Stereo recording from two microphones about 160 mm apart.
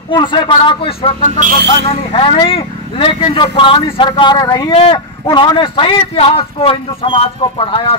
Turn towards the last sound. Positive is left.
turn(degrees=35)  # may be behind; listen again after turning